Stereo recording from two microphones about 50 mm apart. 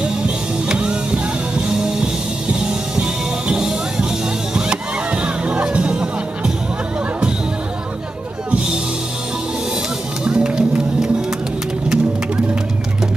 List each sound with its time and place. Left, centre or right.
0.0 s music: right
8.5 s music: right
10.2 s music: centre